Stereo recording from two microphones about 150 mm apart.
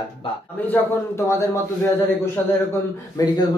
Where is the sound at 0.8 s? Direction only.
10° left (ahead or behind).